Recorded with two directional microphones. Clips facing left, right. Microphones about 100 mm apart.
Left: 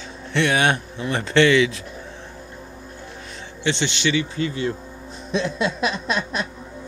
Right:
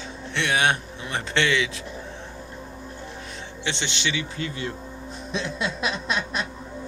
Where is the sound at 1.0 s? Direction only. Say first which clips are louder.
Left 7 dB; 50° left (ahead or behind).